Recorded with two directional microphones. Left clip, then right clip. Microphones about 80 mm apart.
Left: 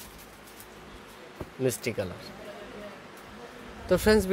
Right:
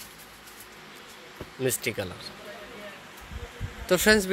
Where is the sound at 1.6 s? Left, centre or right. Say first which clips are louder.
Right 1 dB; centre.